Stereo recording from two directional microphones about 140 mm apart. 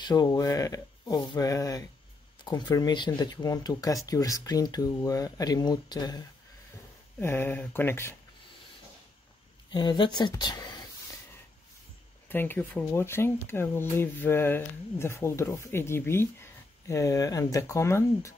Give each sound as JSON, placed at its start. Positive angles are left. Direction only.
{"t": 0.0, "sound": "speech", "side_deg": 30}
{"t": 7.2, "sound": "speech", "side_deg": 15}
{"t": 9.7, "sound": "speech", "side_deg": 30}
{"t": 12.3, "sound": "speech", "side_deg": 15}